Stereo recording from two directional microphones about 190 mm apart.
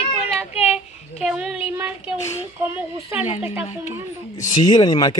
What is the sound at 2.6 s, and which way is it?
Speech, 10° right (ahead or behind).